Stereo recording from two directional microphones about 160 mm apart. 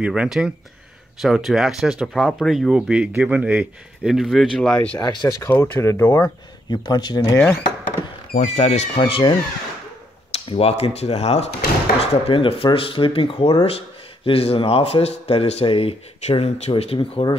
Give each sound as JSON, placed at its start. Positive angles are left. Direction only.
{"t": 0.0, "sound": "speech", "side_deg": -5}
{"t": 4.9, "sound": "speech", "side_deg": 30}
{"t": 6.7, "sound": "speech", "side_deg": 25}
{"t": 8.3, "sound": "speech", "side_deg": 50}